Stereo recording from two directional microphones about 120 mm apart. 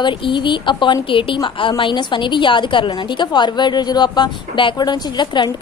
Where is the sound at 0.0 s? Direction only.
40° left (ahead or behind).